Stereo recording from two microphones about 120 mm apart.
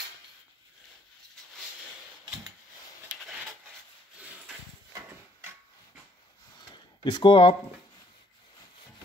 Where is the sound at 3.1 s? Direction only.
5° right (ahead or behind).